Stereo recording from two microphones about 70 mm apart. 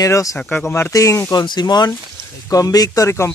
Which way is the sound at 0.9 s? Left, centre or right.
Left.